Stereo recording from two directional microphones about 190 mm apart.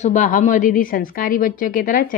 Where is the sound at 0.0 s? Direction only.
40° left (ahead or behind).